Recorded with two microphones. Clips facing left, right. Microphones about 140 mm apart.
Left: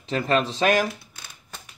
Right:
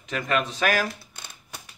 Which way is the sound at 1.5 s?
10° right (ahead or behind).